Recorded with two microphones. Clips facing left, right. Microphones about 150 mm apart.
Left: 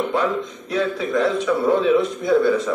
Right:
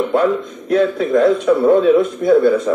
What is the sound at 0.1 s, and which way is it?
A man's voice, 50° right (ahead or behind).